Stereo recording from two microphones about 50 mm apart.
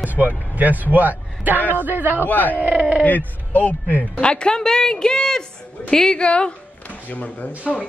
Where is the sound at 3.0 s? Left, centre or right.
Left.